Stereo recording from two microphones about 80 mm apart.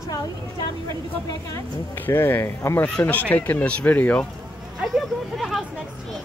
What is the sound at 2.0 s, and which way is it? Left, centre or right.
Speech, left.